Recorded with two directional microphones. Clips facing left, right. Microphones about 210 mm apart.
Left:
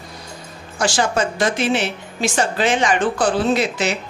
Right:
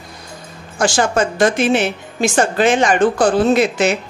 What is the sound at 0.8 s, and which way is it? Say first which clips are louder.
A woman's voice: right 3 dB; 50° right (ahead or behind).